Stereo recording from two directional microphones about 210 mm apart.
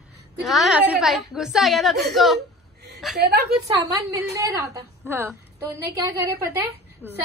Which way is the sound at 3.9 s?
15° right (ahead or behind).